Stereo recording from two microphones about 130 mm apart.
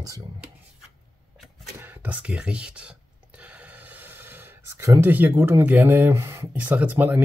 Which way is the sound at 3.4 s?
10° right (ahead or behind).